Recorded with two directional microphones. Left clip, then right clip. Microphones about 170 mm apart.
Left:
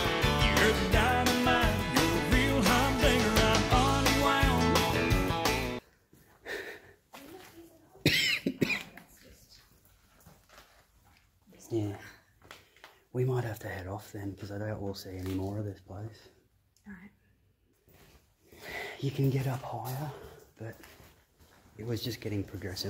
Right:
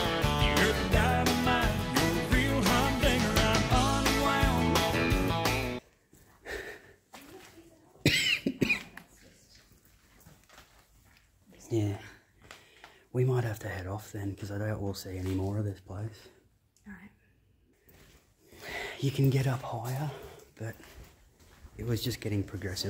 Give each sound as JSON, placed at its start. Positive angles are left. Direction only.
{"t": 0.0, "sound": "music", "side_deg": 0}
{"t": 6.4, "sound": "a sound", "side_deg": -10}
{"t": 8.0, "sound": "cough", "side_deg": -15}
{"t": 11.7, "sound": "speech", "side_deg": -35}
{"t": 13.1, "sound": "speech", "side_deg": -20}
{"t": 16.9, "sound": "speech", "side_deg": 0}
{"t": 18.6, "sound": "speech", "side_deg": -25}
{"t": 21.7, "sound": "speech", "side_deg": -25}